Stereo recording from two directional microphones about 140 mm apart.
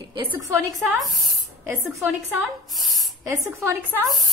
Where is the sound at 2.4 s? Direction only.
Centre (ahead or behind).